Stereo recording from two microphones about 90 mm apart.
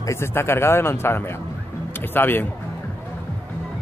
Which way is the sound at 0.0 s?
30° left (ahead or behind).